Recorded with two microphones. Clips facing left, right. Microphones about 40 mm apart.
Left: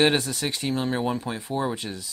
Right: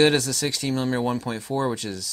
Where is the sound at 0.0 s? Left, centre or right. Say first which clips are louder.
Right 2 dB; left.